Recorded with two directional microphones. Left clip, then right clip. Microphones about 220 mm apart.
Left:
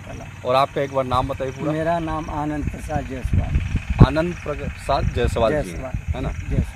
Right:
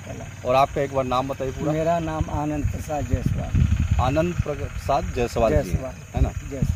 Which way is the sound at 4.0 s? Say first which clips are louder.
Left 2 dB; 15° left (ahead or behind).